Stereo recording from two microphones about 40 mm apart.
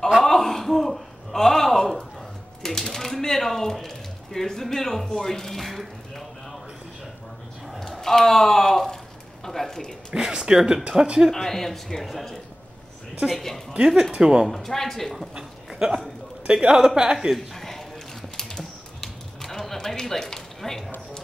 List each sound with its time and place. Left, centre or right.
0.2 s a sound: centre
8.0 s speech: centre
9.4 s a sound: centre
10.1 s speech: centre
11.3 s a woman's voice: centre
14.1 s speech: right
14.5 s speech: centre
15.3 s a woman's voice: right
17.4 s a sound: centre